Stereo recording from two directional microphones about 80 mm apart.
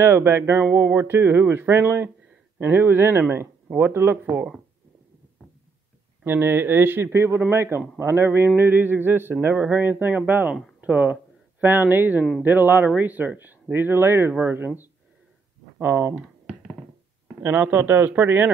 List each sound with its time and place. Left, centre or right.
0.0 s speech: right
6.2 s speech: right
15.8 s speech: right
16.2 s computer keyboard: centre
17.4 s speech: right